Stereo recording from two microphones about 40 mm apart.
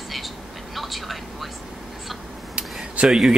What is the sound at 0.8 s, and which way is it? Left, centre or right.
Speech, centre.